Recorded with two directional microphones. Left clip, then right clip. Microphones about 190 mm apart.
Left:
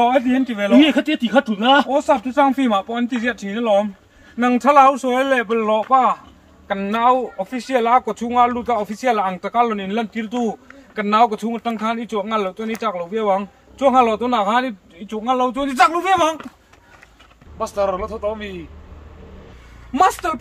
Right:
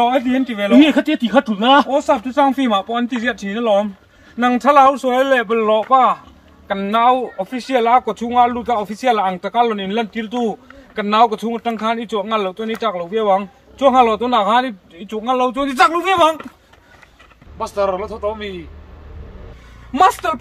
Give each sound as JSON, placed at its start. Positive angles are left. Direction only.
{"t": 0.0, "sound": "speech", "side_deg": 0}
{"t": 17.6, "sound": "speech", "side_deg": 5}
{"t": 19.9, "sound": "speech", "side_deg": 0}